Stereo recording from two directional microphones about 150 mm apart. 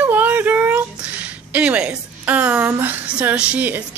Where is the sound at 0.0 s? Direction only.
10° right (ahead or behind).